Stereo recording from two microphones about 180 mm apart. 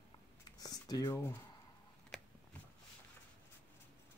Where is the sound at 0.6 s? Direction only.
20° left (ahead or behind).